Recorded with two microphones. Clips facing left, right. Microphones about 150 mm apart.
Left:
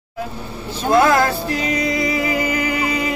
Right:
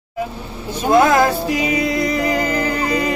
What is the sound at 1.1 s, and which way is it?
Music, 10° right (ahead or behind).